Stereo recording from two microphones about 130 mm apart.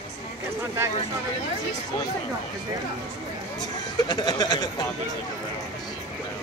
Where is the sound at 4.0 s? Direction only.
35° left (ahead or behind).